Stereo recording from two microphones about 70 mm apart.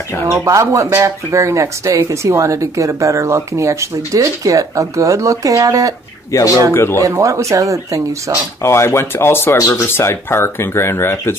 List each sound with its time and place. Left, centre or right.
0.3 s speech: right
6.3 s speech: left
6.7 s speech: left
7.0 s speech: right
8.6 s speech: left
9.5 s speech: left
9.8 s speech: left